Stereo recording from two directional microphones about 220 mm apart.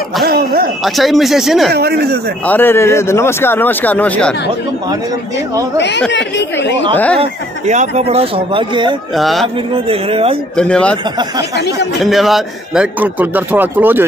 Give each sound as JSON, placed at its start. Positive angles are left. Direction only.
{"t": 0.2, "sound": "speech", "side_deg": -45}
{"t": 0.8, "sound": "speech", "side_deg": 0}
{"t": 1.7, "sound": "speech", "side_deg": -45}
{"t": 2.4, "sound": "a man's voice", "side_deg": 10}
{"t": 5.8, "sound": "speech", "side_deg": 50}
{"t": 7.2, "sound": "speech", "side_deg": -30}
{"t": 9.1, "sound": "speech", "side_deg": 0}
{"t": 9.8, "sound": "speech", "side_deg": -25}
{"t": 10.5, "sound": "speech", "side_deg": 5}
{"t": 11.5, "sound": "speech", "side_deg": 50}
{"t": 12.0, "sound": "a man's voice", "side_deg": 0}